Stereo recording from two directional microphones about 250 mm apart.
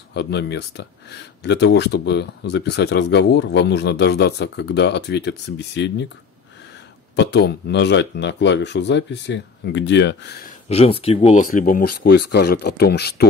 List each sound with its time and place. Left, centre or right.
0.1 s speech: left
7.2 s speech: left
10.7 s speech: left